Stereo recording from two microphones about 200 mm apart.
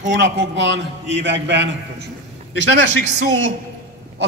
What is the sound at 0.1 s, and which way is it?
A man's voice, 65° right (ahead or behind).